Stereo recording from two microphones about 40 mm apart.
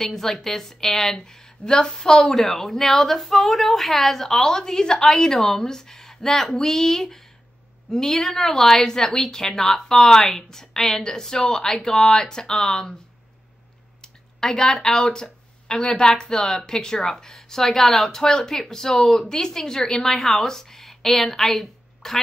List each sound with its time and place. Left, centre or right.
0.0 s speech: centre
2.3 s speech: centre
14.4 s speech: centre
15.0 s speech: centre
15.7 s speech: centre